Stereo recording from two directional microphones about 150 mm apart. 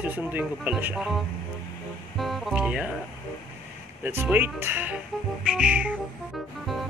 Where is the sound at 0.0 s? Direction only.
10° right (ahead or behind).